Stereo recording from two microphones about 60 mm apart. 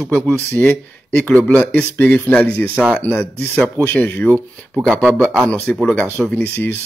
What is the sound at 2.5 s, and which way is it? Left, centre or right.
Speech, left.